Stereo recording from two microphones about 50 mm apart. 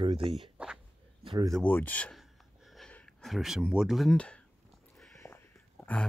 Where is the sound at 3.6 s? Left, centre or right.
Centre.